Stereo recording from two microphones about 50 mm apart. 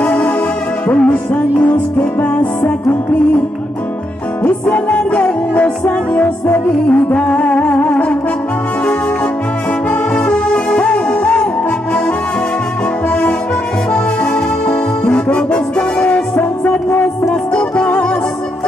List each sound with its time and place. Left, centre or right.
0.0 s music: left
4.5 s music: left
9.8 s music: left
13.9 s music: left
16.3 s music: left
17.3 s music: left